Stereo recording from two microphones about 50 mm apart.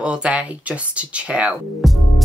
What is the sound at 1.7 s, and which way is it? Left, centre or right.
Music, centre.